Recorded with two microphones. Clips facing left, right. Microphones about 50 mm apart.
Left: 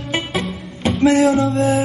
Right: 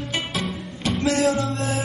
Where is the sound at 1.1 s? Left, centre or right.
Left.